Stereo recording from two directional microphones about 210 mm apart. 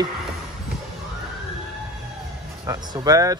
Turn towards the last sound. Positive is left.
turn(degrees=-15)  # may be behind; listen again after turning